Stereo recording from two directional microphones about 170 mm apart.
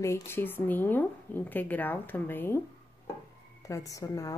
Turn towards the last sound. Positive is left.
turn(degrees=20)  # may be behind; listen again after turning